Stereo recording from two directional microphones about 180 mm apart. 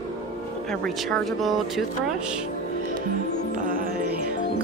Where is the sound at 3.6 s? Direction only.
50° right (ahead or behind).